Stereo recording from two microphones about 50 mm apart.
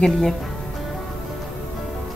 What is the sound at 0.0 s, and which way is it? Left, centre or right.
Speech, centre.